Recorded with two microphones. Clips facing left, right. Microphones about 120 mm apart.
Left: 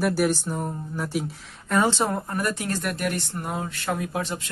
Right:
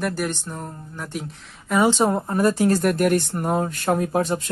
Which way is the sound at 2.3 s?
30° right (ahead or behind).